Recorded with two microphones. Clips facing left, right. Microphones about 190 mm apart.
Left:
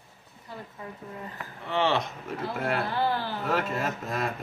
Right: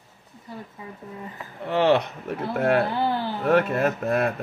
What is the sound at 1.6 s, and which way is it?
Speech, 60° right (ahead or behind).